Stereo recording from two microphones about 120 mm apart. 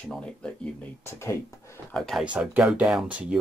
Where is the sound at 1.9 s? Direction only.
5° left (ahead or behind).